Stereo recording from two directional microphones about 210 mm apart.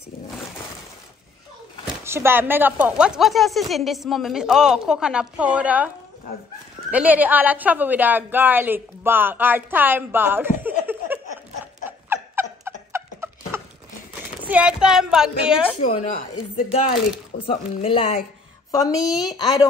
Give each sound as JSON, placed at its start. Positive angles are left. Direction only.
{"t": 2.0, "sound": "speech", "side_deg": -10}
{"t": 6.9, "sound": "a woman's voice", "side_deg": -5}
{"t": 10.9, "sound": "a sound", "side_deg": -10}
{"t": 14.5, "sound": "speech", "side_deg": -5}
{"t": 15.8, "sound": "speech", "side_deg": 35}
{"t": 17.5, "sound": "speech", "side_deg": 25}
{"t": 18.7, "sound": "a woman's voice", "side_deg": 15}